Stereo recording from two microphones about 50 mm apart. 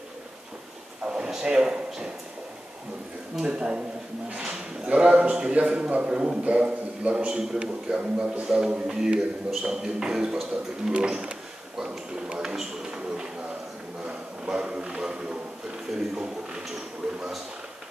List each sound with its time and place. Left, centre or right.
1.0 s a man's voice: centre
3.4 s a man's voice: right
15.9 s speech: centre